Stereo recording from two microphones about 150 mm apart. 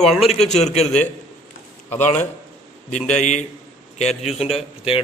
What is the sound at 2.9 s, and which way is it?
A man's voice, 50° left (ahead or behind).